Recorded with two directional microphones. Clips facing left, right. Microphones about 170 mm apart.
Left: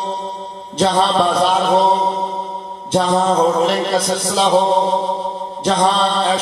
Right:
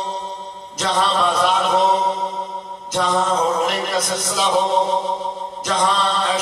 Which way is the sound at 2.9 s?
30° left (ahead or behind).